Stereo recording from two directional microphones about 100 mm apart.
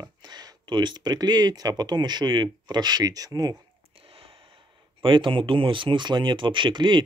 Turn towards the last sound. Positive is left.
turn(degrees=-50)  # may be behind; listen again after turning